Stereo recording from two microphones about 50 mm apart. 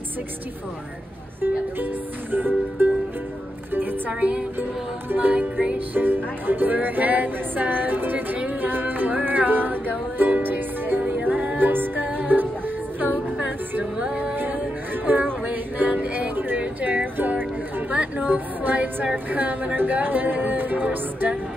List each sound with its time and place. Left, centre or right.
2.3 s music: right
4.2 s music: right
5.9 s music: right
13.9 s music: right
14.3 s music: right
15.9 s music: right
17.9 s a sound: right
19.1 s music: right